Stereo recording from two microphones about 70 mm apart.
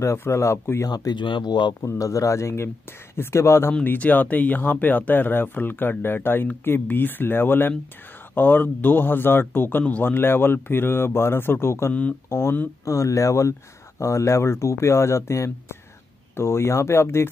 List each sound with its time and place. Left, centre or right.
0.0 s speech: left
0.8 s speech: left
1.8 s speech: left
3.8 s speech: left
12.8 s speech: left